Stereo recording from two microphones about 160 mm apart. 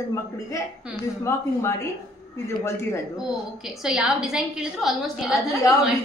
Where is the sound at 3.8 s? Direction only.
5° right (ahead or behind).